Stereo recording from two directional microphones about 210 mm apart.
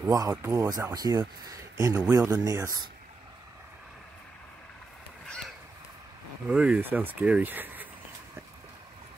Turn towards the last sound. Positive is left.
turn(degrees=-10)  # may be behind; listen again after turning